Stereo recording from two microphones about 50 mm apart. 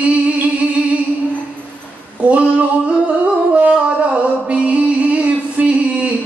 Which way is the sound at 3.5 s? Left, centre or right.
Right.